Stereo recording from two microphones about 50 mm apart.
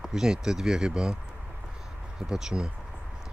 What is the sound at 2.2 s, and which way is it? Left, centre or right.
Speech, centre.